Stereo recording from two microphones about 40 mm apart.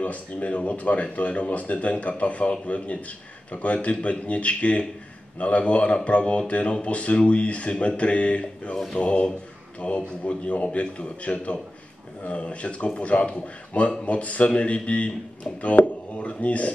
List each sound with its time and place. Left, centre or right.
0.0 s speech: left